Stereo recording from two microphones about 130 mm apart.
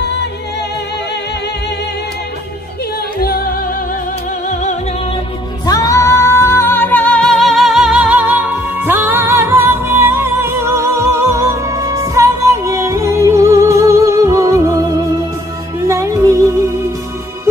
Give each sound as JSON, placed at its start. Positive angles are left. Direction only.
{"t": 4.5, "sound": "music", "side_deg": 70}
{"t": 5.7, "sound": "music", "side_deg": 25}